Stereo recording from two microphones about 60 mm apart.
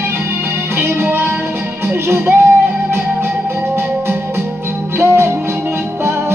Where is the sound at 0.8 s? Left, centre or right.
Right.